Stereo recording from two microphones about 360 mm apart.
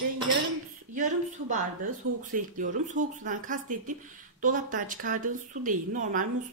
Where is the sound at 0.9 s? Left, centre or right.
Right.